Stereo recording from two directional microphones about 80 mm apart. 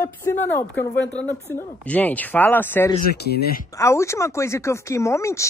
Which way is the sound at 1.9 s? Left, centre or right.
Centre.